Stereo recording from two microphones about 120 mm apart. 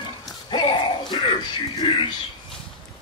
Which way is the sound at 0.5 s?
40° left (ahead or behind).